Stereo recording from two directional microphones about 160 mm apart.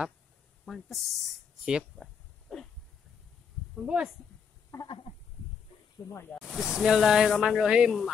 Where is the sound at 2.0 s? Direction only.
Centre (ahead or behind).